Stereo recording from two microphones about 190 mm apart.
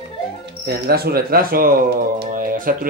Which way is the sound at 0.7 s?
55° right (ahead or behind).